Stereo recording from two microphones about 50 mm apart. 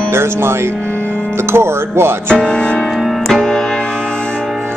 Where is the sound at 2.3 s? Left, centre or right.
Centre.